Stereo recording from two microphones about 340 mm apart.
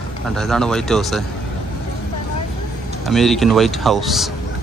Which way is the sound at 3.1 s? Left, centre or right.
Centre.